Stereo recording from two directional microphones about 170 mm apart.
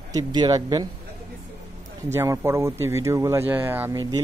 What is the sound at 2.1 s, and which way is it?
A man's voice, 15° right (ahead or behind).